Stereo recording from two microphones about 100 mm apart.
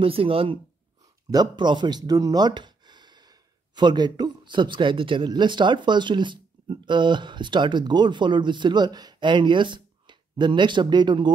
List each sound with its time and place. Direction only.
0.0 s speech: 65° right (ahead or behind)
1.3 s speech: 45° right (ahead or behind)